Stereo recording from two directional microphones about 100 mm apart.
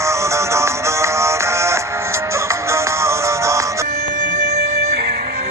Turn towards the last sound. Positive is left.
turn(degrees=-30)  # may be behind; listen again after turning